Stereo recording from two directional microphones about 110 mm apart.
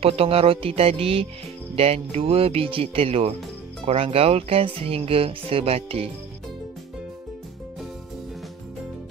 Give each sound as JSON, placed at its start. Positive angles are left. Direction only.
{"t": 0.0, "sound": "speech", "side_deg": -60}